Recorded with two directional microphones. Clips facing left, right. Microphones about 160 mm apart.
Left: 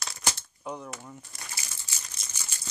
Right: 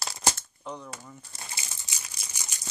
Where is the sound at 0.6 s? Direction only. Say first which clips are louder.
Left 2 dB; 10° left (ahead or behind).